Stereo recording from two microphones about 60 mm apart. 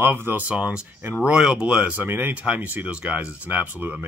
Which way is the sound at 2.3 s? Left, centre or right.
Right.